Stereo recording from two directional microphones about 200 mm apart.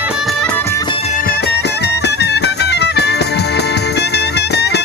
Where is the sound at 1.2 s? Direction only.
50° left (ahead or behind).